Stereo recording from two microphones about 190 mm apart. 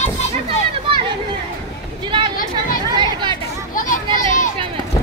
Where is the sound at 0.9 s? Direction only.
25° right (ahead or behind).